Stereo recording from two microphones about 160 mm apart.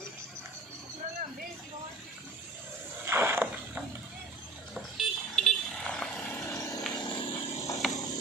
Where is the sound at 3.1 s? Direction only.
15° right (ahead or behind).